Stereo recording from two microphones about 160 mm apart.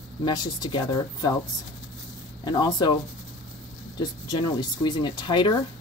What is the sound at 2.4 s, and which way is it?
Speech, 25° left (ahead or behind).